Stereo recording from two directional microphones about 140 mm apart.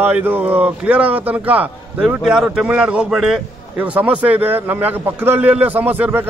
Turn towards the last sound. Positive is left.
turn(degrees=-15)  # may be behind; listen again after turning